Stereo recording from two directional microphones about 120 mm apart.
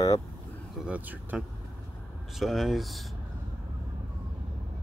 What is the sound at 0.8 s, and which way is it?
Speech, 15° right (ahead or behind).